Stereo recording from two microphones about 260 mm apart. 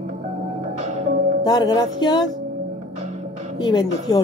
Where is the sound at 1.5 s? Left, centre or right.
Centre.